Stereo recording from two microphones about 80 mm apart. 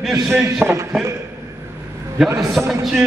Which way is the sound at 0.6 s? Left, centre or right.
Right.